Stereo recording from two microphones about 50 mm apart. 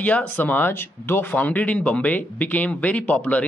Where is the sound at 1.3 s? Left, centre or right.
Left.